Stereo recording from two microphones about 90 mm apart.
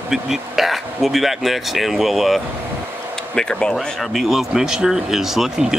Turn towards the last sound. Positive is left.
turn(degrees=-5)  # may be behind; listen again after turning